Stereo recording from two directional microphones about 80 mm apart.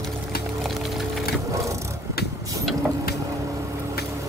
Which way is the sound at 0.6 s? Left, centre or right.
Centre.